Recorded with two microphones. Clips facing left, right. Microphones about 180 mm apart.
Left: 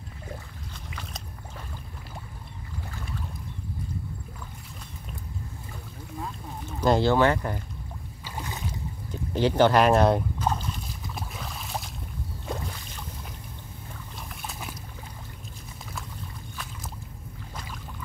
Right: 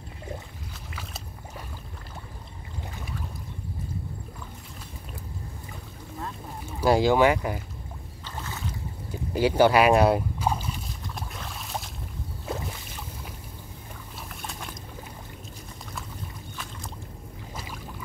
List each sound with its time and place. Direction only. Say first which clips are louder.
6.6 s speech: right 1 dB; 10° right (ahead or behind)
8.2 s boat: left 1 dB; 15° left (ahead or behind)
9.1 s a sound: right 1 dB; 10° right (ahead or behind)
11.1 s boat: left 2 dB; centre (ahead or behind)
14.3 s boat: even; centre (ahead or behind)